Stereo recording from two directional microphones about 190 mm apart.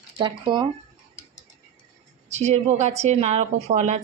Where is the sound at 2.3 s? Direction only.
35° right (ahead or behind).